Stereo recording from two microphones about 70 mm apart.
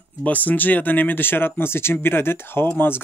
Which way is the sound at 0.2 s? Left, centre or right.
Left.